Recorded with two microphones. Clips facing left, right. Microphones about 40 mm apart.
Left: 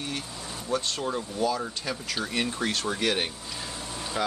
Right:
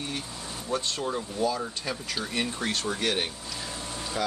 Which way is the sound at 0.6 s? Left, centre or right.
Centre.